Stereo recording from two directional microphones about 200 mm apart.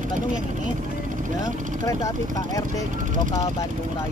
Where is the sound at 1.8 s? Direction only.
15° left (ahead or behind).